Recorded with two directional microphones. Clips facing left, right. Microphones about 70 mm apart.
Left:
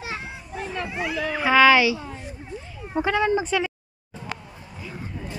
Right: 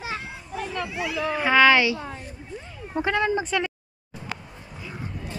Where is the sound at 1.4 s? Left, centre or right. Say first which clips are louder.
Left 2 dB; centre.